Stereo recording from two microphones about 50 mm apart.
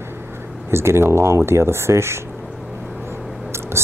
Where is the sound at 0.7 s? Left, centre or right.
Right.